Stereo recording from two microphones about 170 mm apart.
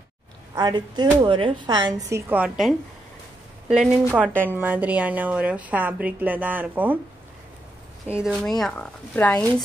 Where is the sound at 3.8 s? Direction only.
5° right (ahead or behind).